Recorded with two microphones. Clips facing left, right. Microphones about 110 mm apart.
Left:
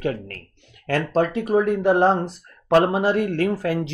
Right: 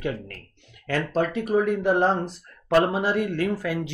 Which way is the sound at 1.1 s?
30° left (ahead or behind).